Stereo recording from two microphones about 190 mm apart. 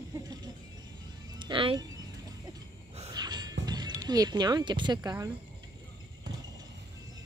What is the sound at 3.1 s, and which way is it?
Music, 20° right (ahead or behind).